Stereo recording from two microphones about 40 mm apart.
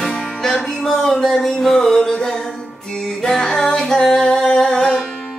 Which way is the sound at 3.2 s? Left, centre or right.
Centre.